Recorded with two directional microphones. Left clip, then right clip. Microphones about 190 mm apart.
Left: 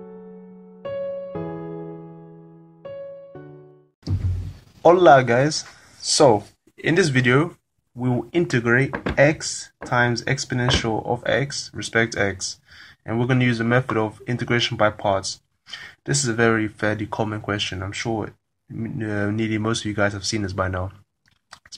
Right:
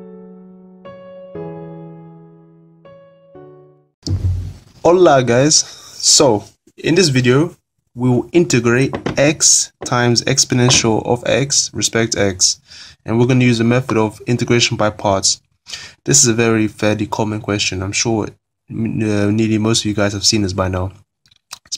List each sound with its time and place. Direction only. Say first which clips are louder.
4.8 s speech: right 2 dB; 30° right (ahead or behind)